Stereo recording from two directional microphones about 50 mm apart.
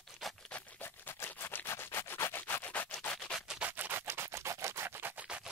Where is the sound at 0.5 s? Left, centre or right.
Left.